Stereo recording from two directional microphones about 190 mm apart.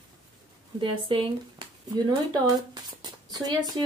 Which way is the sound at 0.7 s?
30° right (ahead or behind).